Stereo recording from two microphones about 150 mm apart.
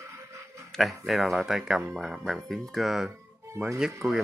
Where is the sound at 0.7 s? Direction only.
Centre (ahead or behind).